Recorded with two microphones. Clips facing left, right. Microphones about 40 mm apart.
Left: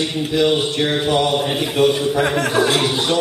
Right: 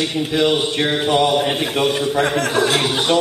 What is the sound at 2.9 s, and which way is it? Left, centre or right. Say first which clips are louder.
Speech: right 2 dB; right.